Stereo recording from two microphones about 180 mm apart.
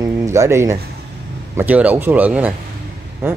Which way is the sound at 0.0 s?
15° right (ahead or behind).